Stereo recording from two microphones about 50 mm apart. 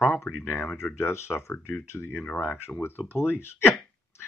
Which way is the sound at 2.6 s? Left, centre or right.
Left.